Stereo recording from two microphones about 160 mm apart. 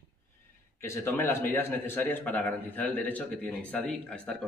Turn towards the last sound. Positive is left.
turn(degrees=5)  # may be behind; listen again after turning